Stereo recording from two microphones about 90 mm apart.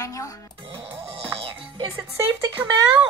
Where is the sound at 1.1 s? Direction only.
70° right (ahead or behind).